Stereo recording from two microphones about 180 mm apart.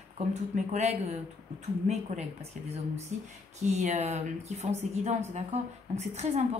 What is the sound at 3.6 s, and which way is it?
A woman's voice, 40° right (ahead or behind).